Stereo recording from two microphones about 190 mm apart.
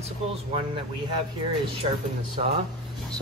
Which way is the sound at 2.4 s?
35° right (ahead or behind).